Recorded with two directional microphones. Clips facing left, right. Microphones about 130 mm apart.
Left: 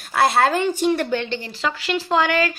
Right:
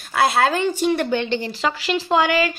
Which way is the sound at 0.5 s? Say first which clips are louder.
Even; 15° left (ahead or behind).